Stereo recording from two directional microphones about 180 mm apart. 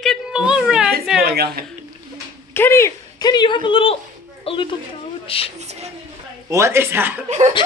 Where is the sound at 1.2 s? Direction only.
60° right (ahead or behind).